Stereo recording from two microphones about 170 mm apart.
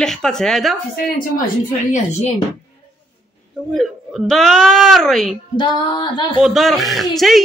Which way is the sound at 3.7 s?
Centre (ahead or behind).